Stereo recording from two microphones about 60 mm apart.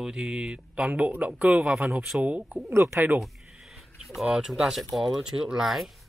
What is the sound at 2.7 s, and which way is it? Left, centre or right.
Speech, right.